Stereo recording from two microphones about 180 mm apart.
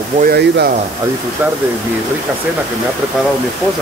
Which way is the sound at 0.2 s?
65° right (ahead or behind).